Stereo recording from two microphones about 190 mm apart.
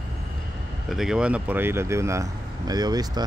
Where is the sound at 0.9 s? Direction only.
Centre (ahead or behind); by 3.2 s 20° right (ahead or behind).